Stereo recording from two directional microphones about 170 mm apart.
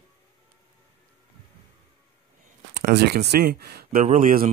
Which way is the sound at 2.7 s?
75° right (ahead or behind).